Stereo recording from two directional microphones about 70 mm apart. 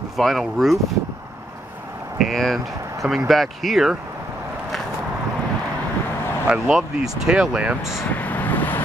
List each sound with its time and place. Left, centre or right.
0.2 s speech: centre
2.1 s speech: centre
6.4 s speech: centre
8.0 s vehicle: left